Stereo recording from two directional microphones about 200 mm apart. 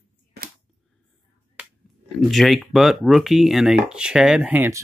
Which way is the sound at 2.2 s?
Centre (ahead or behind).